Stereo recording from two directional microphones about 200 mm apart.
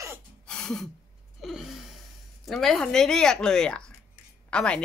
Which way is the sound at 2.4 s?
Centre (ahead or behind).